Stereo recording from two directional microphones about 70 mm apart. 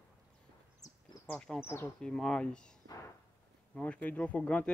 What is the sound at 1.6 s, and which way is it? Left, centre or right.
Speech, left.